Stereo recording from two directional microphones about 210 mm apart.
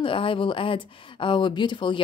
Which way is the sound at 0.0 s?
25° left (ahead or behind).